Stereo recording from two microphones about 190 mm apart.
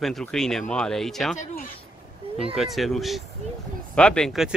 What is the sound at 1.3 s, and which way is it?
Speech, 45° left (ahead or behind).